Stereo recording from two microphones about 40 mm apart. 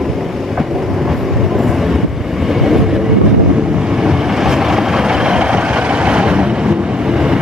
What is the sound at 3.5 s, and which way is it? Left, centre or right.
Vehicle, right.